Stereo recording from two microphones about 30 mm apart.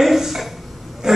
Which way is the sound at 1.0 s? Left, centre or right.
Centre.